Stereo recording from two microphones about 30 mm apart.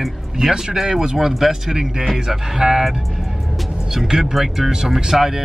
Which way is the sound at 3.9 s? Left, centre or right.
Centre.